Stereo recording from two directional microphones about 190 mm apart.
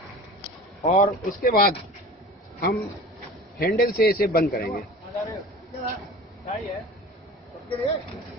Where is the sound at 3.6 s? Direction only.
55° left (ahead or behind).